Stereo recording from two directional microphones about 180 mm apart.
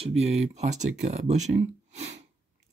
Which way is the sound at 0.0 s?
35° right (ahead or behind).